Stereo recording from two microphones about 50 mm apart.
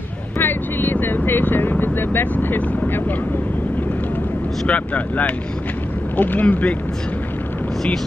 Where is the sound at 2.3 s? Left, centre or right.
Left.